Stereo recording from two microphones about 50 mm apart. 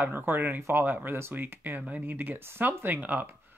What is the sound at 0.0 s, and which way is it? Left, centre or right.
Speech, right.